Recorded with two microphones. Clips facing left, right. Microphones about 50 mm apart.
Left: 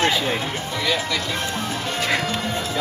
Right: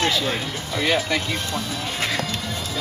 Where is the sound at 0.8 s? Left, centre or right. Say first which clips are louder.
Right 3 dB; right.